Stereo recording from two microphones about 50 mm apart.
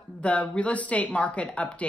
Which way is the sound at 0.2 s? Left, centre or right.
Left.